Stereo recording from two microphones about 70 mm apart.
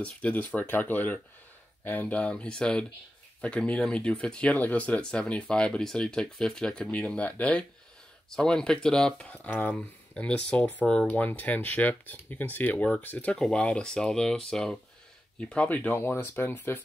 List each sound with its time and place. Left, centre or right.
0.0 s speech: centre
16.0 s speech: left